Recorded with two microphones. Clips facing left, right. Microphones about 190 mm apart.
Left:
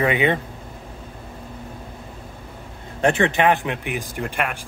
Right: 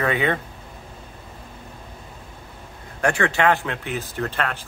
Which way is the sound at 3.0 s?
20° left (ahead or behind).